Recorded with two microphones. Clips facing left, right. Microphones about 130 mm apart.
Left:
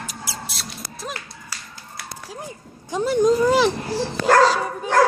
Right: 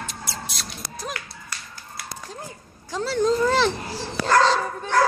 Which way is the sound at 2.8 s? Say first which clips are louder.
Left 4 dB; 15° left (ahead or behind).